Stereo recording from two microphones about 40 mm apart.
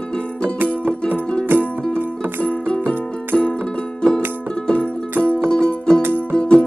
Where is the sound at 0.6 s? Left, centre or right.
Right.